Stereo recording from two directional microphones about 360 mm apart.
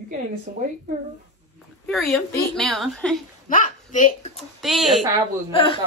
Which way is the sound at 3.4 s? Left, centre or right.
Left.